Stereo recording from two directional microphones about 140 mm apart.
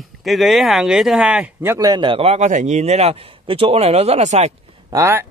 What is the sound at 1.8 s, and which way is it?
A man's voice, 30° right (ahead or behind).